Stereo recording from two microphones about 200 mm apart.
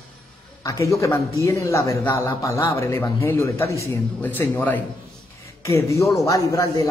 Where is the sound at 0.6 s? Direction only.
15° left (ahead or behind).